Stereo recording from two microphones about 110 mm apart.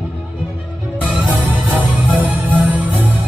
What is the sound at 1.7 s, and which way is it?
Music, 15° right (ahead or behind).